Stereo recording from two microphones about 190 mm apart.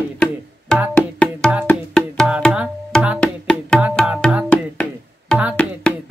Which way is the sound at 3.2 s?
5° left (ahead or behind).